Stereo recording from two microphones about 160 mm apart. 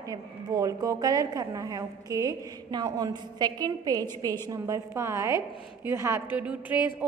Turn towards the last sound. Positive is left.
turn(degrees=-10)  # may be behind; listen again after turning